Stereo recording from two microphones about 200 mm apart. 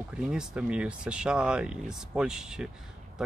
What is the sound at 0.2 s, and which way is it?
Speech, 5° right (ahead or behind).